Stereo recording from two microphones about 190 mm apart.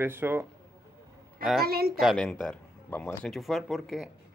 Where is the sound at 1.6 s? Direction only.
55° right (ahead or behind).